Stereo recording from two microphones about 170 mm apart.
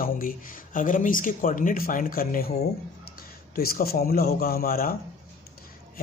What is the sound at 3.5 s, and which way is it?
A man's voice, 65° left (ahead or behind).